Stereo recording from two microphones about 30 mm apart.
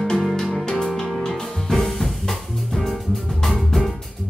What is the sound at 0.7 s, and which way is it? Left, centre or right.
Music, left.